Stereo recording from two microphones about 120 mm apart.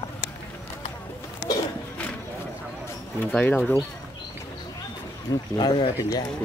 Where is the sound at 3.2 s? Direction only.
15° left (ahead or behind).